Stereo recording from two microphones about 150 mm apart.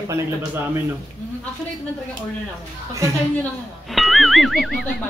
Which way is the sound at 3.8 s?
Centre (ahead or behind).